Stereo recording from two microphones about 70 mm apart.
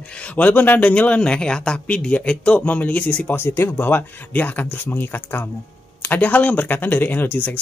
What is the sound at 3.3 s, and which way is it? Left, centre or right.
Speech, left.